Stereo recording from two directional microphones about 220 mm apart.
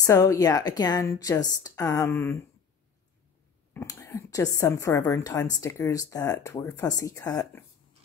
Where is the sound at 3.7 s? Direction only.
10° left (ahead or behind).